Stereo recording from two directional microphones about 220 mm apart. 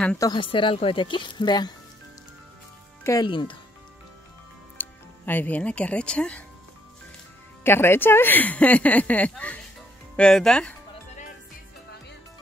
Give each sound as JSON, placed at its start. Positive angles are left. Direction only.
{"t": 0.0, "sound": "speech", "side_deg": 5}
{"t": 0.3, "sound": "speech", "side_deg": 20}
{"t": 3.0, "sound": "speech", "side_deg": 15}
{"t": 4.7, "sound": "speech", "side_deg": 10}
{"t": 7.6, "sound": "speech", "side_deg": 10}